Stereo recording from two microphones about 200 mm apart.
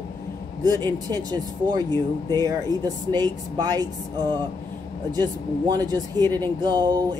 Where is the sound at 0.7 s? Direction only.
20° right (ahead or behind).